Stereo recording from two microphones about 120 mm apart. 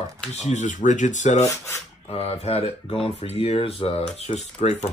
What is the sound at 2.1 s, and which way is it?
Speech, 60° left (ahead or behind).